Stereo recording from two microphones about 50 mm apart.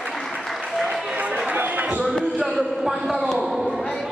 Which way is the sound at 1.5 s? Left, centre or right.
Right.